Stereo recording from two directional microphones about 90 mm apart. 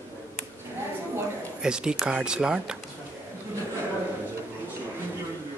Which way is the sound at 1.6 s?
10° right (ahead or behind).